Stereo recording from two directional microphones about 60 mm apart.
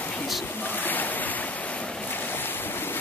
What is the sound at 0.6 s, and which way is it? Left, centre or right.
Waves, left.